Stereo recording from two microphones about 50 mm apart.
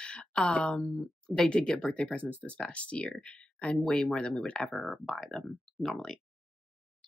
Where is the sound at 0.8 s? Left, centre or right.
Centre.